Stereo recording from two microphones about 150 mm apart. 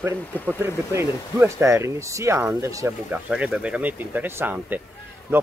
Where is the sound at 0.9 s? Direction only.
20° right (ahead or behind).